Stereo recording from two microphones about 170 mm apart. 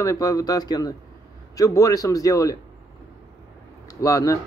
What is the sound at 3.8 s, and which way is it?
Speech, 20° left (ahead or behind).